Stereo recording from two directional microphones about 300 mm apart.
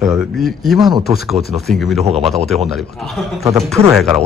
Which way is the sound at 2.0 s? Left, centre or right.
Right.